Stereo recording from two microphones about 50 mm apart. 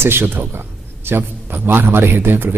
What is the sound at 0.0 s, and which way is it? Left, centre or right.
A man's voice, right.